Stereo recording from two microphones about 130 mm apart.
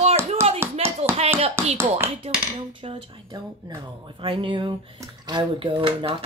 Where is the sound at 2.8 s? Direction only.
40° right (ahead or behind).